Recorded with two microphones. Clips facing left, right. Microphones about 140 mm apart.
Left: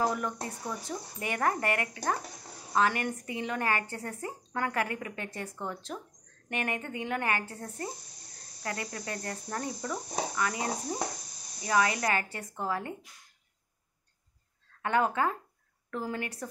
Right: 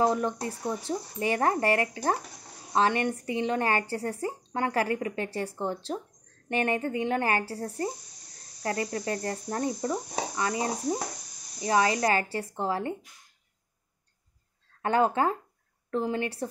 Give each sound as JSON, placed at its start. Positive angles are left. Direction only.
{"t": 0.0, "sound": "a woman's voice", "side_deg": -30}
{"t": 0.5, "sound": "insect", "side_deg": -30}
{"t": 11.6, "sound": "a woman's voice", "side_deg": -30}
{"t": 14.8, "sound": "insect", "side_deg": -35}
{"t": 15.9, "sound": "a woman's voice", "side_deg": -25}